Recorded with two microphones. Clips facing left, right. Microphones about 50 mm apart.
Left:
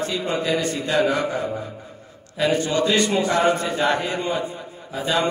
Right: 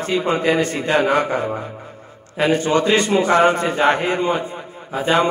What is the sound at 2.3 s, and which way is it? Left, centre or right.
A man's voice, right.